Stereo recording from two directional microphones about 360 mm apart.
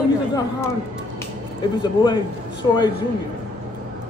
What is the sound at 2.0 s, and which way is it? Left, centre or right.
Speech, centre.